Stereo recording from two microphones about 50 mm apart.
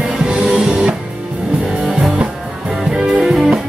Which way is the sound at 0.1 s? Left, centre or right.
Centre.